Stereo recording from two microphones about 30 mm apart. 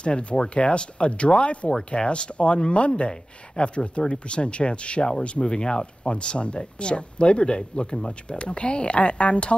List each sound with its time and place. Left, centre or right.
0.0 s speech: left